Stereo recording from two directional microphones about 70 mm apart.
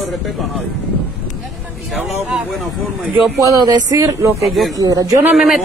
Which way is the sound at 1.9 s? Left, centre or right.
Centre.